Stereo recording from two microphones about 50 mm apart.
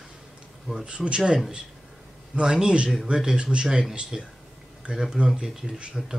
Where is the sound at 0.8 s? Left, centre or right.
Right.